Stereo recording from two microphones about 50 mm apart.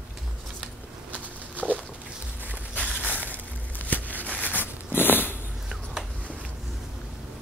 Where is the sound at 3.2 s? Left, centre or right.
Left.